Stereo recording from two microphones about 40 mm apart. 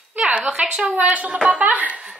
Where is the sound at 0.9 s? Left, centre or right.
Right.